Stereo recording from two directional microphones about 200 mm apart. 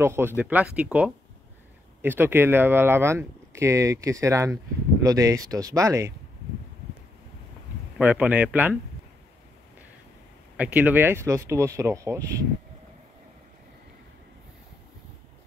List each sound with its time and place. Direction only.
0.0 s speech: 10° right (ahead or behind)
8.0 s speech: 5° right (ahead or behind)
10.6 s speech: 10° right (ahead or behind)